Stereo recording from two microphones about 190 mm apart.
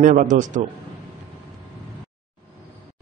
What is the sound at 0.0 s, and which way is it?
Speech, 45° right (ahead or behind).